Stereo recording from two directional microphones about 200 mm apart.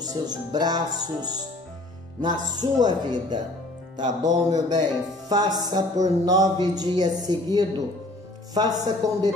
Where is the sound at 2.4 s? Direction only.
20° right (ahead or behind).